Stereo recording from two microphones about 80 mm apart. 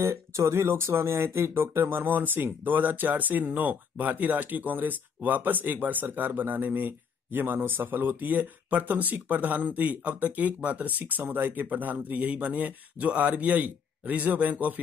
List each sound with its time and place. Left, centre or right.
0.0 s speech: right; by 14.8 s centre